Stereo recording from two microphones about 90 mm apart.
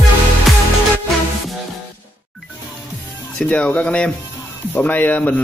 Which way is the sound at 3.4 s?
15° left (ahead or behind).